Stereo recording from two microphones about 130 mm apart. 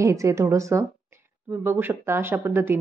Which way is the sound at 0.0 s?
25° right (ahead or behind).